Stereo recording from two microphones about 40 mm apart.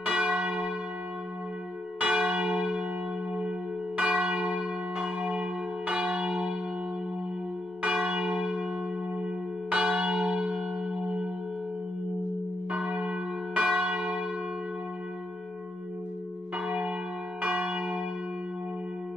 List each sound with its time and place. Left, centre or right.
0.0 s church bell: right
2.0 s church bell: right
7.8 s church bell: right
9.2 s church bell: right
12.7 s church bell: right
16.6 s church bell: right